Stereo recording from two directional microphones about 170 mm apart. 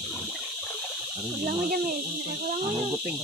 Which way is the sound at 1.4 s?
60° right (ahead or behind).